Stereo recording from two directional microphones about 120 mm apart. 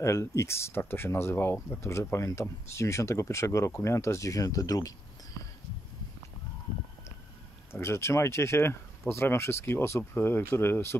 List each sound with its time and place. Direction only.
0.0 s speech: 25° left (ahead or behind)
7.7 s speech: 20° left (ahead or behind)